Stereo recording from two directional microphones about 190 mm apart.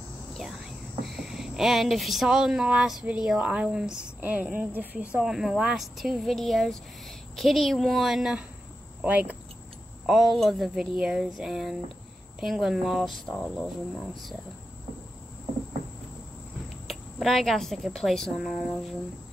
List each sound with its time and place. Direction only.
0.3 s whispering: centre (ahead or behind)
1.0 s a woman's voice: centre (ahead or behind)
16.8 s speech: centre (ahead or behind)